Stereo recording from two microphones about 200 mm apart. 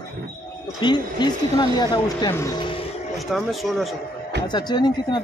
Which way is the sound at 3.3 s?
Centre (ahead or behind).